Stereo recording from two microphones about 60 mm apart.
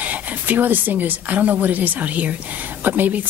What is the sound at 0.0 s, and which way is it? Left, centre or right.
Speech, right.